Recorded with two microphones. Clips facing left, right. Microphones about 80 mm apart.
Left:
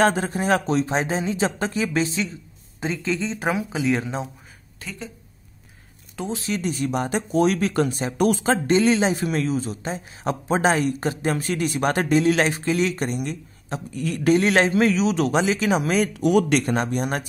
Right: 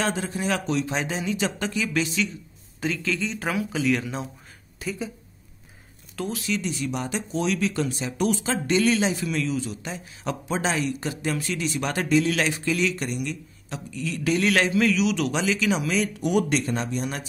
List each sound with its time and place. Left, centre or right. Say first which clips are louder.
0.0 s a man's voice: left 6 dB; left
4.7 s a woman's voice: right 5 dB; centre
6.1 s speech: left 1 dB; left
6.4 s a man's voice: left 4 dB; left
14.4 s a man's voice: left 3 dB; left
16.2 s speech: left 6 dB; left